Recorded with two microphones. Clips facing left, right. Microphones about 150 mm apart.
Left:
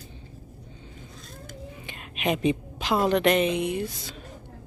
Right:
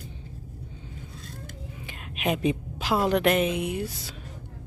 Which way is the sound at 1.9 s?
5° right (ahead or behind).